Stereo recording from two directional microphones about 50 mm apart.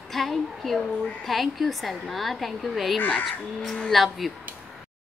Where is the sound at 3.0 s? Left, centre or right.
Left.